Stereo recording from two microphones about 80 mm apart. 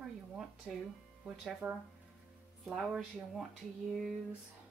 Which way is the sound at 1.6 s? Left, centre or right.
Right.